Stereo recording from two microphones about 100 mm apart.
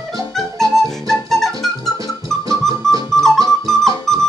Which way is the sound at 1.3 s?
5° left (ahead or behind).